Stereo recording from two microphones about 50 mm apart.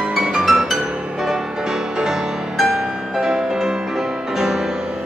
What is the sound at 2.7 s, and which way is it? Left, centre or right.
Music, centre.